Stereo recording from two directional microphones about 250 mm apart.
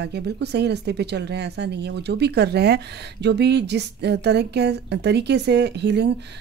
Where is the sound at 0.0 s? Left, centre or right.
Right.